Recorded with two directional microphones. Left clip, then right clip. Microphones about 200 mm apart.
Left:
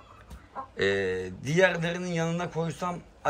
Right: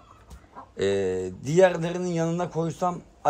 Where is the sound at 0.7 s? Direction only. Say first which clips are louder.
Right 2 dB; 25° right (ahead or behind).